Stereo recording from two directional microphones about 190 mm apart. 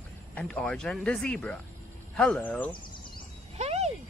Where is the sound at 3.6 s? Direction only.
35° right (ahead or behind).